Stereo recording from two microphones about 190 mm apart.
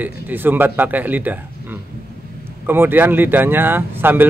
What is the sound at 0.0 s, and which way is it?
Speech, 10° right (ahead or behind).